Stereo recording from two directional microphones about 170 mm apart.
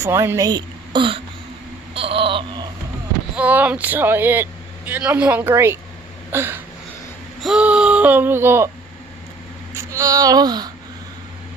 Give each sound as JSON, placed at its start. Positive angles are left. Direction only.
{"t": 0.0, "sound": "a woman's voice", "side_deg": -15}
{"t": 2.0, "sound": "baby cry", "side_deg": -30}
{"t": 3.3, "sound": "speech", "side_deg": -10}
{"t": 9.8, "sound": "speech", "side_deg": -20}